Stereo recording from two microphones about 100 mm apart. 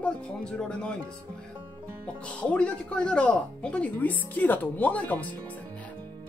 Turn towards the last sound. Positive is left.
turn(degrees=15)  # may be behind; listen again after turning